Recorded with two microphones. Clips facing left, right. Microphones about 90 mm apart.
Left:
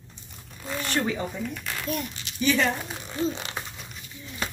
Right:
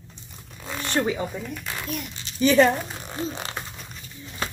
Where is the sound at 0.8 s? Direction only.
30° right (ahead or behind).